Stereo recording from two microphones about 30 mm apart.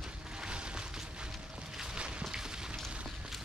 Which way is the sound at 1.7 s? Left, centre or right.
Centre.